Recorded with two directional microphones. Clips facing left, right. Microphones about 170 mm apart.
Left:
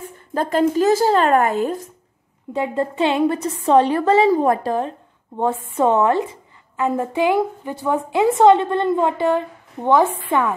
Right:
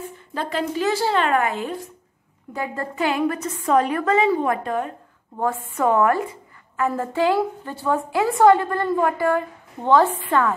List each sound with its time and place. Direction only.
0.3 s speech: 45° left (ahead or behind)
2.5 s a woman's voice: 25° left (ahead or behind)